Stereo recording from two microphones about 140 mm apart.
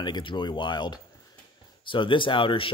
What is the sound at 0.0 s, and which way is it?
Speech, 35° left (ahead or behind).